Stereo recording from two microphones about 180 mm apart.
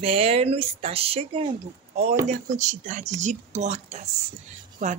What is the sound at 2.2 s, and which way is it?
Speech, 40° right (ahead or behind).